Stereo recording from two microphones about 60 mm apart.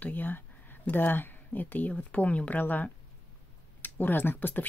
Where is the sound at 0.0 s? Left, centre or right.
Left.